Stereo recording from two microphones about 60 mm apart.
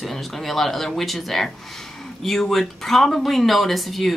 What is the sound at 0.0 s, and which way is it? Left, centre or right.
Speech, centre.